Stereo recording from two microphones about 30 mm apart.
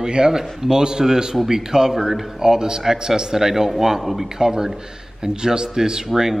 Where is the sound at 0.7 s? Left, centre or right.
Right.